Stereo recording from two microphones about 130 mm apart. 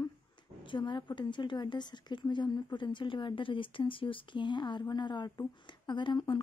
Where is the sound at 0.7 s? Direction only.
40° left (ahead or behind).